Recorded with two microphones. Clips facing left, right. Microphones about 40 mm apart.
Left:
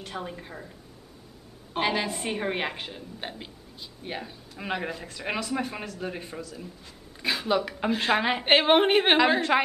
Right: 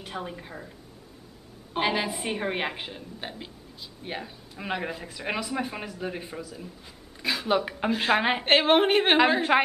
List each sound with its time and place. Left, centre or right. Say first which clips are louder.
0.0 s speech: even; centre
1.7 s speech: even; centre
3.2 s speech: even; centre
7.4 s a woman's voice: right 1 dB; centre
7.7 s a woman's voice: right 1 dB; centre
8.5 s speech: left 1 dB; centre
9.5 s a woman's voice: right 1 dB; centre